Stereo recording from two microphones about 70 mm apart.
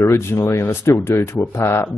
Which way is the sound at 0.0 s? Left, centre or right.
Left.